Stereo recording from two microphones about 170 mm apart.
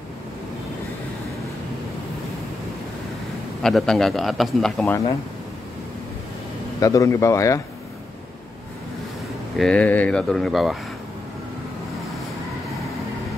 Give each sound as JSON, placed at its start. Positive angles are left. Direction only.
{"t": 3.6, "sound": "a man's voice", "side_deg": 5}
{"t": 6.8, "sound": "speech", "side_deg": 20}
{"t": 9.6, "sound": "a man's voice", "side_deg": 5}